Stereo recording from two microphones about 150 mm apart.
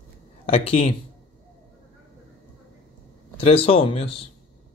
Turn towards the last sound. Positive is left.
turn(degrees=40)  # may be behind; listen again after turning